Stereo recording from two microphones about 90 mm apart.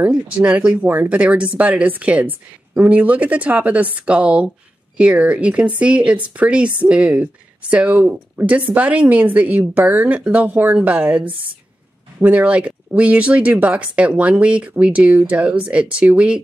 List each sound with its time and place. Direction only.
0.1 s speech: 10° right (ahead or behind)